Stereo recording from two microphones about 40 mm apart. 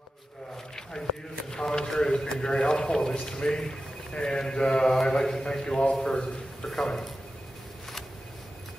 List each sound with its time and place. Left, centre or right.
1.0 s speech: centre
1.5 s a sound: centre
2.5 s speech: centre